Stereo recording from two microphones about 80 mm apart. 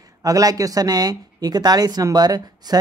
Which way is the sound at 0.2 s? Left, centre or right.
Right.